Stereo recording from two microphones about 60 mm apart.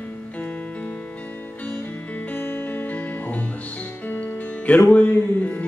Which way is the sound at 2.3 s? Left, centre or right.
Left.